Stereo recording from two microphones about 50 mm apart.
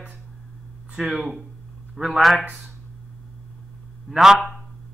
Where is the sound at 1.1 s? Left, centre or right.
Right.